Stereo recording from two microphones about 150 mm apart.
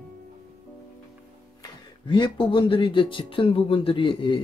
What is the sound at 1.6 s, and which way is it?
Speech, 30° left (ahead or behind).